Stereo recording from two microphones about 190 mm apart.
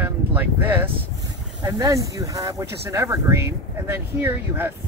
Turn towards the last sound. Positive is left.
turn(degrees=-15)  # may be behind; listen again after turning